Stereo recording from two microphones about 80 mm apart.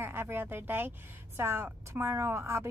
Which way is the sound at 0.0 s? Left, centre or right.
Right.